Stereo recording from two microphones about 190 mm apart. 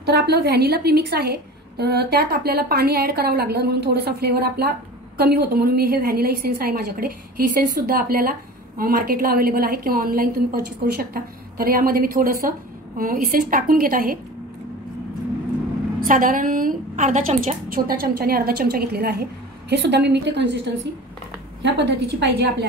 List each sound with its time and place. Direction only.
0.0 s a woman's voice: 60° right (ahead or behind)
16.1 s a woman's voice: 45° right (ahead or behind)
17.6 s a woman's voice: 50° right (ahead or behind)